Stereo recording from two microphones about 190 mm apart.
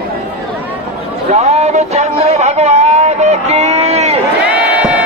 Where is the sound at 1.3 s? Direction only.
35° right (ahead or behind).